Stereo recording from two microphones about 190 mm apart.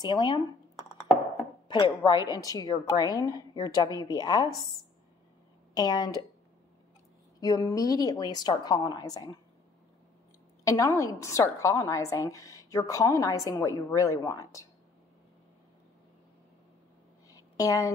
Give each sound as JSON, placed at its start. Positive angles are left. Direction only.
{"t": 0.0, "sound": "a woman's voice", "side_deg": 25}
{"t": 2.0, "sound": "a woman's voice", "side_deg": 20}
{"t": 5.8, "sound": "a woman's voice", "side_deg": 20}
{"t": 7.3, "sound": "a woman's voice", "side_deg": 20}
{"t": 10.6, "sound": "a woman's voice", "side_deg": 15}
{"t": 17.3, "sound": "a sound", "side_deg": 20}